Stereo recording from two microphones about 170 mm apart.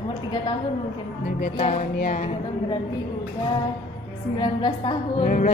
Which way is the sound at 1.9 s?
55° left (ahead or behind).